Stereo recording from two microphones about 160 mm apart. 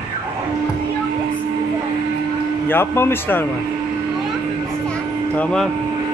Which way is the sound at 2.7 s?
15° left (ahead or behind).